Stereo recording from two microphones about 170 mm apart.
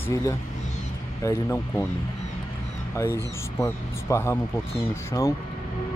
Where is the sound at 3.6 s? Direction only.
15° left (ahead or behind).